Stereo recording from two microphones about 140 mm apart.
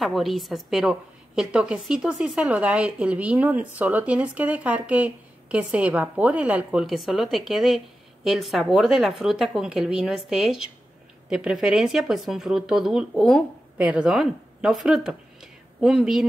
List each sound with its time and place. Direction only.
0.0 s a woman's voice: centre (ahead or behind)